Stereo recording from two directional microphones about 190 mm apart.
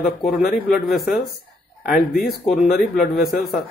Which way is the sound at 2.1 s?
50° left (ahead or behind).